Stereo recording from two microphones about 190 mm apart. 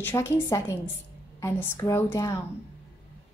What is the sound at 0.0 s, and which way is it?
A woman's voice, 15° left (ahead or behind).